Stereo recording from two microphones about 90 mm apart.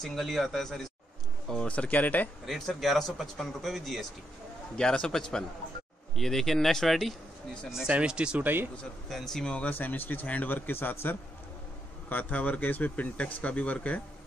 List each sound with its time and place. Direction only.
0.0 s speech: centre (ahead or behind)
1.5 s speech: 10° left (ahead or behind)
2.4 s speech: centre (ahead or behind)
7.7 s speech: 10° right (ahead or behind)
9.1 s a man's voice: 5° left (ahead or behind)